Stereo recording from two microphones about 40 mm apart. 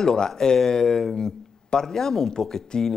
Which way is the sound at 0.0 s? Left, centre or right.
Centre.